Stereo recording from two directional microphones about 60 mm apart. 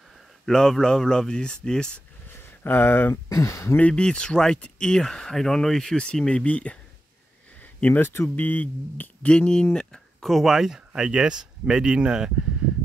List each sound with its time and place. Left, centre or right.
0.5 s speech: centre
2.3 s a sound: left
3.3 s speech: left
3.7 s speech: centre
8.0 s speech: left
8.5 s speech: left
9.3 s speech: centre
9.8 s speech: centre
10.9 s speech: centre